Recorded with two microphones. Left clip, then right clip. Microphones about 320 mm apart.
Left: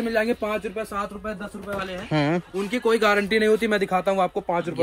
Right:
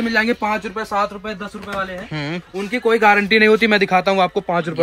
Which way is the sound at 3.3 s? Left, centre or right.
Centre.